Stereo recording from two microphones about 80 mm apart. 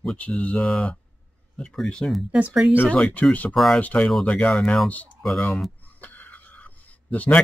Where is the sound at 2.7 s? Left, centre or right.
Left.